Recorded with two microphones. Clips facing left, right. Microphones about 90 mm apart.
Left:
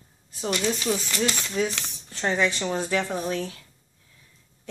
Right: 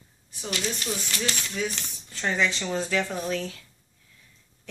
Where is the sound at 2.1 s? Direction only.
20° left (ahead or behind).